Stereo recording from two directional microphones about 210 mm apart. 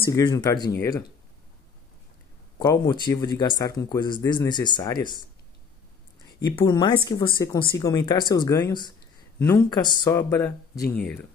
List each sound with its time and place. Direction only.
0.1 s speech: 20° left (ahead or behind)
2.6 s speech: 20° left (ahead or behind)
6.4 s speech: 20° left (ahead or behind)